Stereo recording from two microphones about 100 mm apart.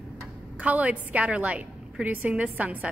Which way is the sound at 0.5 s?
15° right (ahead or behind).